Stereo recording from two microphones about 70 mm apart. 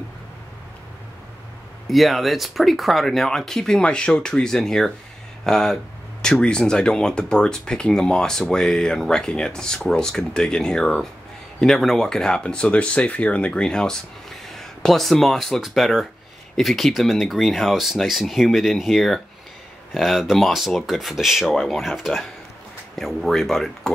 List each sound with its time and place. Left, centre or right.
1.9 s speech: centre